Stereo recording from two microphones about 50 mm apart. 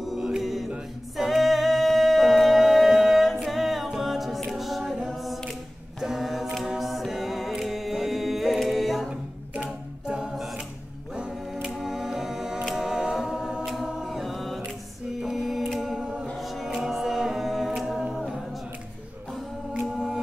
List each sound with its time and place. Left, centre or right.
0.0 s mantra: centre
1.1 s a capella: centre
9.6 s a capella: centre
11.6 s music: centre
12.7 s a capella: centre
13.7 s mantra: centre
15.2 s music: centre
16.0 s a capella: centre
16.3 s a capella: centre
19.9 s music: centre